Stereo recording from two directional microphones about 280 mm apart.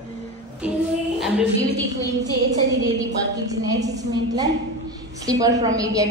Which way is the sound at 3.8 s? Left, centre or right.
Centre.